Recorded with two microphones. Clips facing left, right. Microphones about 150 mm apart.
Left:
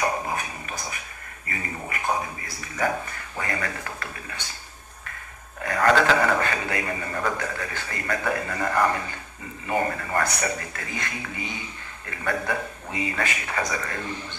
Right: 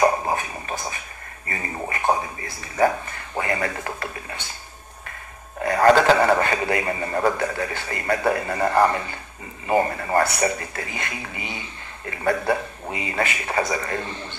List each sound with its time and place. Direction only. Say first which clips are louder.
0.0 s a sound: right 6 dB; 35° right (ahead or behind)
2.6 s a man's voice: right 6 dB; 40° right (ahead or behind)
5.6 s a man's voice: right 5 dB; 35° right (ahead or behind)